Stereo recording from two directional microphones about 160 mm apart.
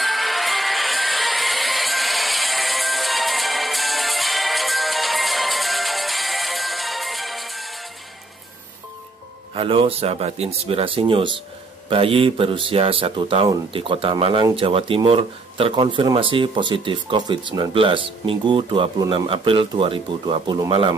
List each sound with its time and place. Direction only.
0.0 s music: centre (ahead or behind)
9.6 s speech: 35° right (ahead or behind)